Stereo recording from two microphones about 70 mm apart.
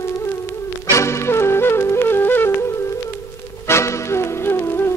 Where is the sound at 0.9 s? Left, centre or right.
Left.